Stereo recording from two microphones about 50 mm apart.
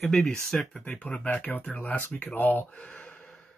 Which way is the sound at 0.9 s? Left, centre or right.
Left.